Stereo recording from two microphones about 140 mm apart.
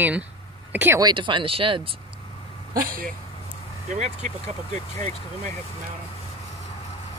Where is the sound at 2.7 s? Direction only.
90° right.